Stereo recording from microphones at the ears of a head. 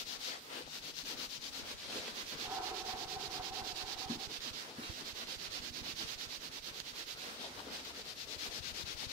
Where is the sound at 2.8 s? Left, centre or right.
Right.